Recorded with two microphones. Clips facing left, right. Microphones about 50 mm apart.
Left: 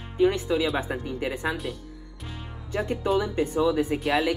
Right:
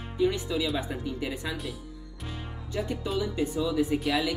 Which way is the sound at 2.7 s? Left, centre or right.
Left.